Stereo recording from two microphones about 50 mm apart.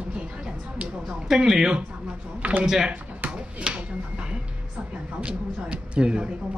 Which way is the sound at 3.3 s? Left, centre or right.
Right.